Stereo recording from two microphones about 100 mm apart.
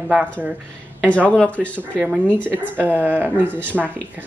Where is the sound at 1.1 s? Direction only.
15° left (ahead or behind).